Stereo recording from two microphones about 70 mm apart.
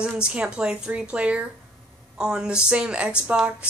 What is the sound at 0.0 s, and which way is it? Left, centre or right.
Speech, centre.